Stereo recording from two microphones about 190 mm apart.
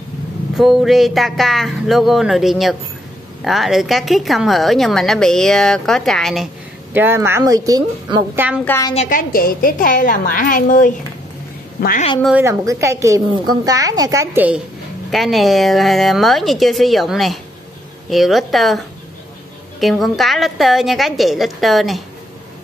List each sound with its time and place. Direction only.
0.6 s a woman's voice: centre (ahead or behind); by 8.5 s 20° right (ahead or behind)
8.6 s a woman's voice: 15° left (ahead or behind)
8.9 s a woman's voice: 40° left (ahead or behind)
12.4 s a woman's voice: 15° right (ahead or behind)
19.8 s a woman's voice: centre (ahead or behind)